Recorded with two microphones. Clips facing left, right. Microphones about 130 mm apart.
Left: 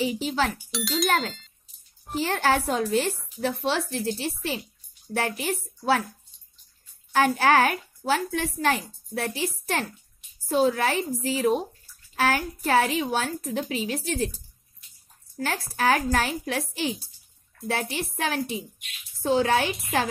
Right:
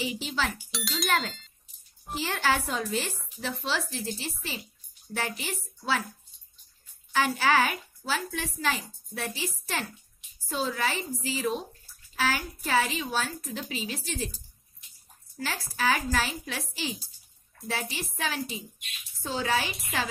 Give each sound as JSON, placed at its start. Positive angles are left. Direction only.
{"t": 0.0, "sound": "a woman's voice", "side_deg": 50}
{"t": 0.7, "sound": "speech", "side_deg": 0}
{"t": 2.1, "sound": "a woman's voice", "side_deg": 55}
{"t": 7.2, "sound": "a woman's voice", "side_deg": 55}